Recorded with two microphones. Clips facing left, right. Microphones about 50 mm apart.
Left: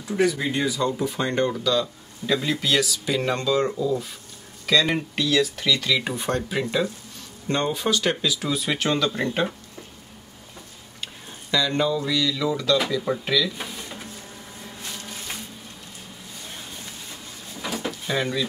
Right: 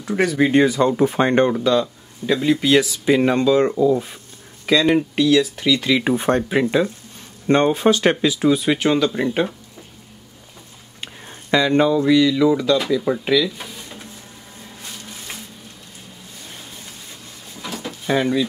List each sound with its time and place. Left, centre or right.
0.0 s speech: right; by 3.7 s centre
3.7 s speech: right
5.1 s speech: centre; by 8.5 s right
8.5 s speech: centre
11.0 s speech: right; by 13.5 s centre
13.6 s drawer open or close: centre
17.6 s drawer open or close: centre
18.0 s speech: right